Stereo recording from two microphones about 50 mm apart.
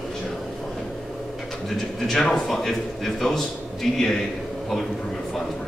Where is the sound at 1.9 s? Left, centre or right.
Centre.